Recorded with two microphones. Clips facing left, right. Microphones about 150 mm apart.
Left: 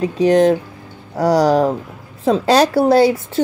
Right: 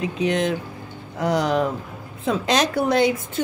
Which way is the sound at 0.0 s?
35° left (ahead or behind).